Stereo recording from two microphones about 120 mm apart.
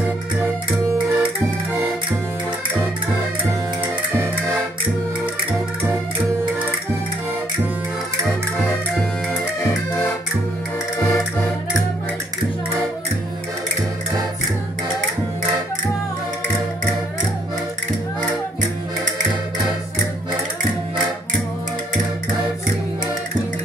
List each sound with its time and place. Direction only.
1.1 s music: 15° right (ahead or behind)
11.0 s music: 15° left (ahead or behind)